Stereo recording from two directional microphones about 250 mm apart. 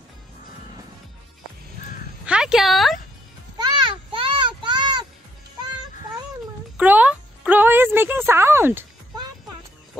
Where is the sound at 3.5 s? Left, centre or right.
Centre.